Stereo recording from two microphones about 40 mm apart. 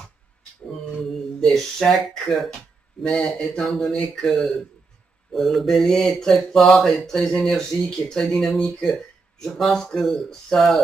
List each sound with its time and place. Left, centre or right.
1.4 s speech: centre
3.0 s speech: centre
3.6 s mantra: centre
4.1 s speech: centre
6.8 s mantra: centre
7.2 s speech: centre